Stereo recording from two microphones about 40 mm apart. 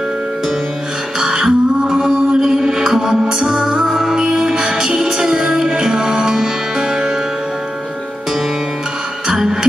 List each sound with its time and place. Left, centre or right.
1.2 s music: centre
9.3 s music: centre